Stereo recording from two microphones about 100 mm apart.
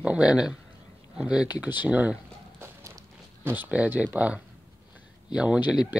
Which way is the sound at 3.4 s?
20° right (ahead or behind).